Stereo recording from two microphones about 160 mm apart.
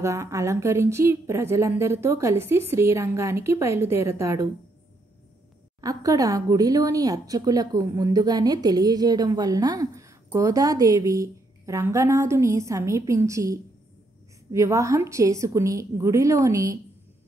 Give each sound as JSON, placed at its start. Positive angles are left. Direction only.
{"t": 0.0, "sound": "speech", "side_deg": -20}
{"t": 5.8, "sound": "speech", "side_deg": -20}